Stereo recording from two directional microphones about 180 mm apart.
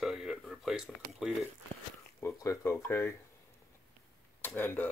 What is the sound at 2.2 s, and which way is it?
Speech, 15° left (ahead or behind).